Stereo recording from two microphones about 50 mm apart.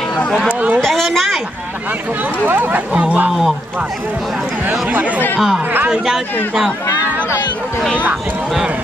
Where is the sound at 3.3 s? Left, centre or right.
Centre.